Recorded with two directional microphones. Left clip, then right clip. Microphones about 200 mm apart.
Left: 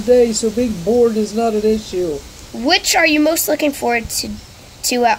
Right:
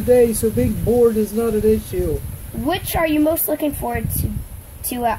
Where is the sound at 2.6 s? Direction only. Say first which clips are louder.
Left 7 dB; 45° left (ahead or behind).